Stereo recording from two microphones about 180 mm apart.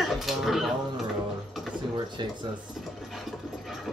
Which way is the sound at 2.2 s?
25° right (ahead or behind).